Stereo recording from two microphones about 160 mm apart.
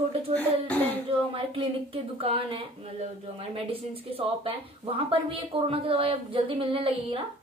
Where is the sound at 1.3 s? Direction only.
35° right (ahead or behind).